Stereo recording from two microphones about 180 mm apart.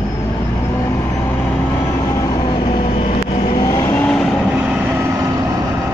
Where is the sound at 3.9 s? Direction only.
5° left (ahead or behind).